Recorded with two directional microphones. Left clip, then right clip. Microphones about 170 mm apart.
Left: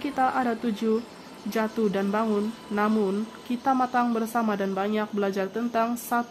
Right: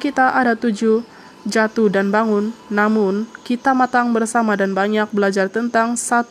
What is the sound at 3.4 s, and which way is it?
Speech, 35° right (ahead or behind).